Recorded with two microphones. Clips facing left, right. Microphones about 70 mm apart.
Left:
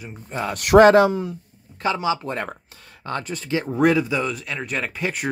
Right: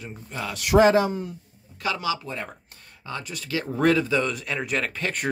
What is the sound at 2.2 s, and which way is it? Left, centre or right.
Speech, left.